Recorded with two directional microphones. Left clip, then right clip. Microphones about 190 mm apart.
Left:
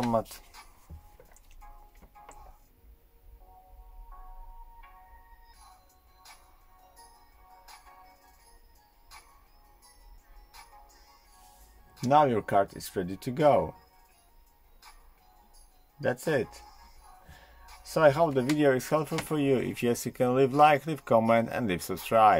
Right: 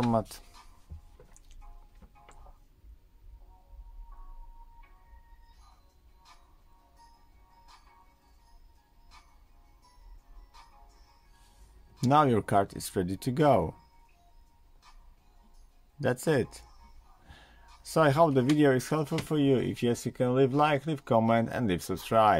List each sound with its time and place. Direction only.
12.0 s speech: 25° right (ahead or behind)
16.0 s speech: 25° right (ahead or behind)
17.8 s speech: 30° right (ahead or behind)